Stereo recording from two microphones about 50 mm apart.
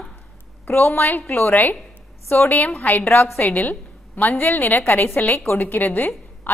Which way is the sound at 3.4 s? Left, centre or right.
Left.